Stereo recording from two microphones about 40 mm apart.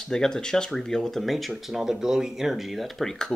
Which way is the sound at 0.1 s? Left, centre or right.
Centre.